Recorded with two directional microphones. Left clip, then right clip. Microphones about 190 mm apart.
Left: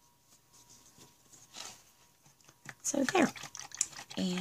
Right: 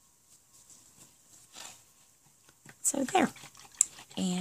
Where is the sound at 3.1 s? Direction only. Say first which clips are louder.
Right 2 dB; 25° right (ahead or behind).